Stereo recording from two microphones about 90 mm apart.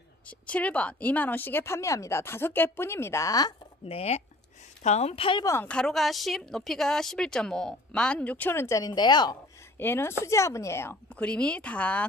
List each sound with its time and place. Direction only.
0.3 s speech: 15° left (ahead or behind); by 3.5 s 40° left (ahead or behind)
5.1 s speech: 90° left
5.7 s speech: 5° left (ahead or behind); by 8.8 s 30° left (ahead or behind)
8.8 s speech: 50° left (ahead or behind)
9.8 s speech: 25° left (ahead or behind)
11.1 s speech: 10° left (ahead or behind)